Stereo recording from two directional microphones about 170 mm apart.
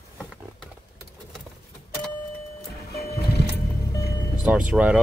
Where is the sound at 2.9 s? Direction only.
70° left (ahead or behind).